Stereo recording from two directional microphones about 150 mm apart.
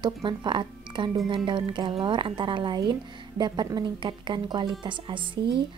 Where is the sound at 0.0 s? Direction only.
30° right (ahead or behind).